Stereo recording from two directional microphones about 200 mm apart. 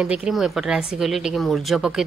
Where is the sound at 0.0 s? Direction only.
5° right (ahead or behind).